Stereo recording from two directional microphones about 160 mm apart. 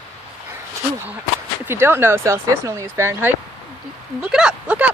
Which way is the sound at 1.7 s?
15° right (ahead or behind).